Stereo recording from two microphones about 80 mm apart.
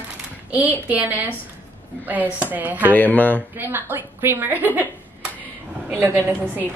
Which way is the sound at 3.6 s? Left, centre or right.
Right.